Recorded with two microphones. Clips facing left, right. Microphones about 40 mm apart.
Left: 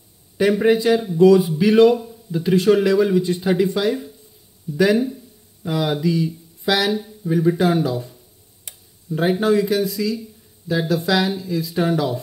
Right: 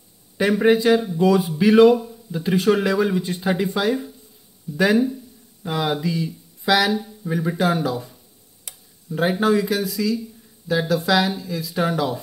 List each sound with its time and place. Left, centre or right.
0.4 s a man's voice: centre
2.8 s a man's voice: centre
4.9 s speech: centre
5.6 s a man's voice: centre